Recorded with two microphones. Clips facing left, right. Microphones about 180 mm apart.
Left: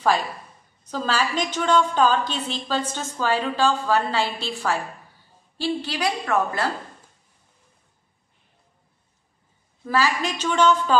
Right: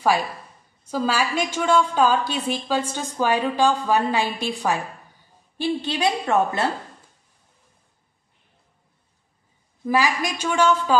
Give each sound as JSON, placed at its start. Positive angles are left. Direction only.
{"t": 0.8, "sound": "a woman's voice", "side_deg": -10}
{"t": 9.8, "sound": "a woman's voice", "side_deg": -15}